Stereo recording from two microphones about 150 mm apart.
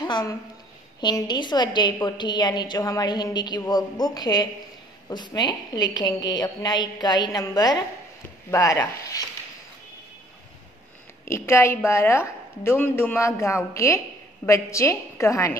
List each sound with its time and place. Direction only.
0.0 s a woman's voice: 25° left (ahead or behind)
11.2 s a woman's voice: 20° left (ahead or behind)